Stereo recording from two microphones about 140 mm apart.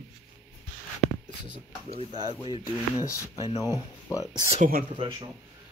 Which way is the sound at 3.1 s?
20° left (ahead or behind).